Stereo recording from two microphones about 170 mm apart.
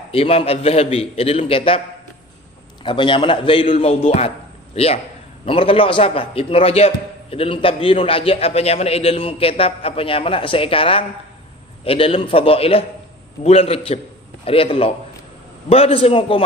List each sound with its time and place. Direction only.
0.1 s a man's voice: 35° left (ahead or behind)
2.8 s a man's voice: 30° left (ahead or behind)